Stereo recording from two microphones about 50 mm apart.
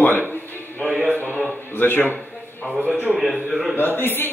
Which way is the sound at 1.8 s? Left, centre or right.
Left.